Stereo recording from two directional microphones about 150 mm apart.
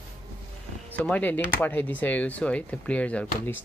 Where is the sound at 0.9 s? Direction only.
10° left (ahead or behind).